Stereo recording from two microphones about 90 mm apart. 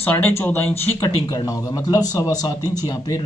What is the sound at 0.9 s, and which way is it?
Speech, 40° left (ahead or behind).